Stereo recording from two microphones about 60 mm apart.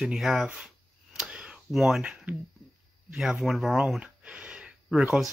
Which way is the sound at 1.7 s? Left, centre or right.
Centre.